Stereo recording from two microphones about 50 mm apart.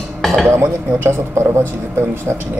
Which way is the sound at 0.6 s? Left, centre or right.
Right.